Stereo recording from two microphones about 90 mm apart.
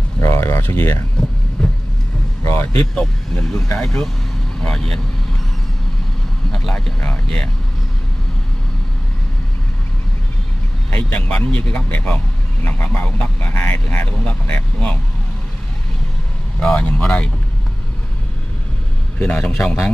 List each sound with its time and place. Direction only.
0.2 s a sound: 35° left (ahead or behind)
1.2 s speech: 10° left (ahead or behind)
1.6 s vehicle: 5° left (ahead or behind)
2.4 s speech: 30° left (ahead or behind)
3.7 s speech: 5° left (ahead or behind)
6.5 s a sound: 5° left (ahead or behind)
7.0 s speech: 10° left (ahead or behind)
10.9 s speech: 15° left (ahead or behind)
16.5 s speech: 10° left (ahead or behind)
19.1 s a man's voice: 15° left (ahead or behind)